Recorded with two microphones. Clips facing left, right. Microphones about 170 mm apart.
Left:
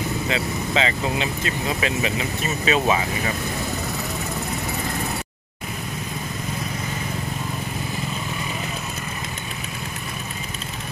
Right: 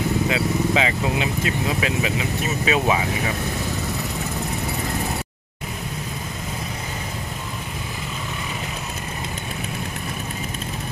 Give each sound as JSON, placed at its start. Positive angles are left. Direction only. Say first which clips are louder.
{"t": 0.3, "sound": "speech", "louder": "right 3 dB", "side_deg": -10}